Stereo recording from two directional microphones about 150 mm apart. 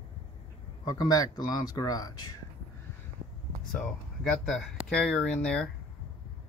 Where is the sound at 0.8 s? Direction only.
25° left (ahead or behind).